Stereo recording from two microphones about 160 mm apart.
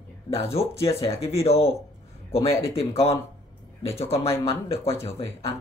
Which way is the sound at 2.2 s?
20° left (ahead or behind).